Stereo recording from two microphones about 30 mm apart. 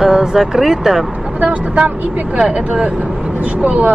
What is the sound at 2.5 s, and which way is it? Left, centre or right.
Speech, right.